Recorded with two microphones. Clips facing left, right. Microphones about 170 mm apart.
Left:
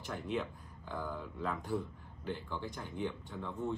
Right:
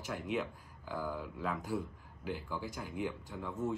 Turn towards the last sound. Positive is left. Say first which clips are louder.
# right 1 dB
turn(degrees=-5)  # may be behind; listen again after turning